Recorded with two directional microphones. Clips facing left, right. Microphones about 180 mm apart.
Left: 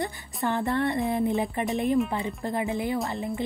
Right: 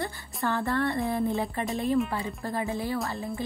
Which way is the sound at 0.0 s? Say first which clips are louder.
Left 2 dB; 20° left (ahead or behind).